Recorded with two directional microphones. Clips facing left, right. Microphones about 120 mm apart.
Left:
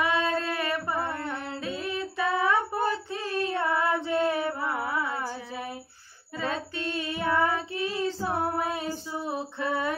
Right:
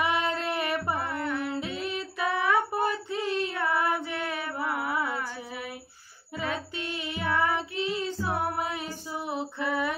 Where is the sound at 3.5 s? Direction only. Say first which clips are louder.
Left 1 dB; 30° left (ahead or behind).